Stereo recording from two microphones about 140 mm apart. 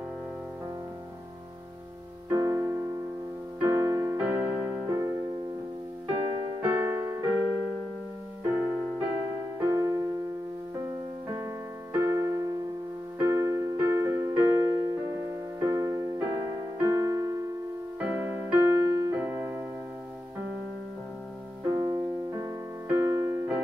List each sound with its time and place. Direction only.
2.2 s music: 20° right (ahead or behind)
4.2 s music: 10° right (ahead or behind)
4.8 s music: 25° right (ahead or behind)
6.6 s music: 15° right (ahead or behind)
8.5 s music: 10° right (ahead or behind)
9.6 s music: 20° right (ahead or behind)
11.2 s keyboard: 20° right (ahead or behind)
16.8 s music: 20° right (ahead or behind)
17.9 s music: 10° right (ahead or behind)
19.1 s music: 10° right (ahead or behind)
21.6 s music: 30° right (ahead or behind)
22.8 s keyboard: 15° right (ahead or behind)